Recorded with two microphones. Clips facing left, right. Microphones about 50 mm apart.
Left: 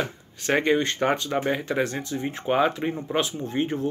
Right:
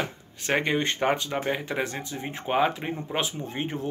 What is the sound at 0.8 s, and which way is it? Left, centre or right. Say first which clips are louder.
Speech: left 2 dB; centre.